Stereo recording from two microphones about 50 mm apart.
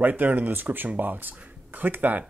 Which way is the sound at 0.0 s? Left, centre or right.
Right.